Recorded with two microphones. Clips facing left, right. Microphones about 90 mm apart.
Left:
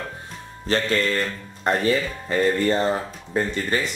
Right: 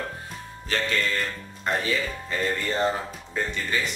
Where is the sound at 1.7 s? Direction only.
45° left (ahead or behind).